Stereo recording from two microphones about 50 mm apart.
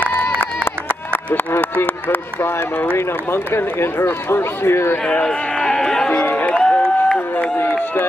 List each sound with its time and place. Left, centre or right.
1.6 s speech: left
5.0 s a man's voice: centre
6.5 s a sound: centre
7.3 s run: left